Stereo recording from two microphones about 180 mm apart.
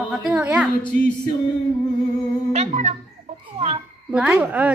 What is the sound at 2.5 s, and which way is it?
Music, 40° right (ahead or behind).